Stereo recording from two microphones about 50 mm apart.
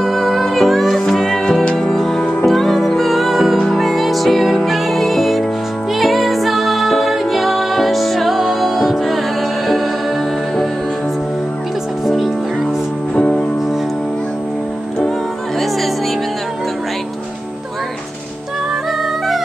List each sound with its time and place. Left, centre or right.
0.0 s music: centre
13.1 s music: left